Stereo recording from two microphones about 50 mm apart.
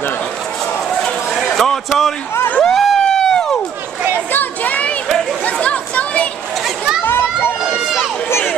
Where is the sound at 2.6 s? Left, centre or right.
Centre.